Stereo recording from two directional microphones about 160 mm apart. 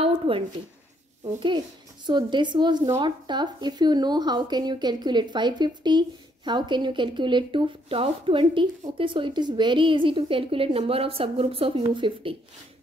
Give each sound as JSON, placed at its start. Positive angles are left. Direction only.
{"t": 1.2, "sound": "speech", "side_deg": -30}